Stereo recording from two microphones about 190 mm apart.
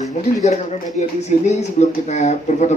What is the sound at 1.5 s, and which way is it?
A woman's voice, 35° left (ahead or behind).